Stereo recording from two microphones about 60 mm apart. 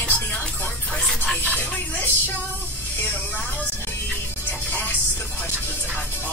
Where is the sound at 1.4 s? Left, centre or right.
Left.